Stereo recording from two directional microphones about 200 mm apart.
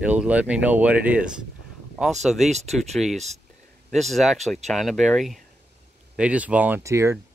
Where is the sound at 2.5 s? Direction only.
35° right (ahead or behind).